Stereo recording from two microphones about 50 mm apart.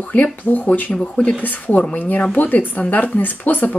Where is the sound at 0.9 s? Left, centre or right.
Left.